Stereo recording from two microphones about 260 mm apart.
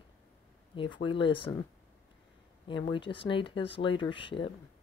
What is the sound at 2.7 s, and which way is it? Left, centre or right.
Speech, centre.